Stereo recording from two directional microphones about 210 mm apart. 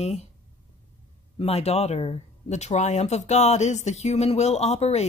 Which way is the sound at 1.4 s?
30° left (ahead or behind).